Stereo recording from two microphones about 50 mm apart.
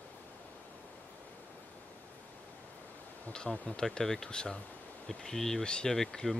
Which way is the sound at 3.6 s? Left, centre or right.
Centre.